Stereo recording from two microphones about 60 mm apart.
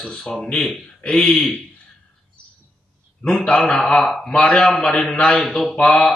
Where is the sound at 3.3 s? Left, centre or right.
Centre.